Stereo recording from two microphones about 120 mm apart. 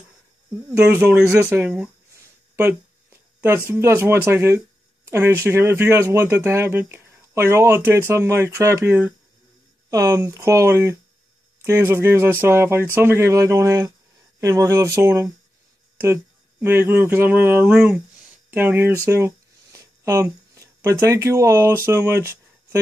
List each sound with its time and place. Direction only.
0.6 s speech: 20° right (ahead or behind)
2.5 s a sound: 15° right (ahead or behind)
3.8 s speech: 20° right (ahead or behind)